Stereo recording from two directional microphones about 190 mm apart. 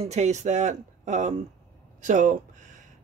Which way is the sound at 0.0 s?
35° right (ahead or behind).